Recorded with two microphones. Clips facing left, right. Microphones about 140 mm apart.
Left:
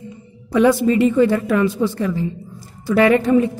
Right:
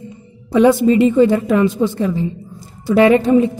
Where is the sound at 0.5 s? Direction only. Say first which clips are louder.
Right 3 dB; 20° right (ahead or behind).